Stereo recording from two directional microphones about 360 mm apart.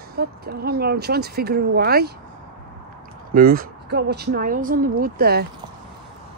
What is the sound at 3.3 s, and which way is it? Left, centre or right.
A woman's voice, right.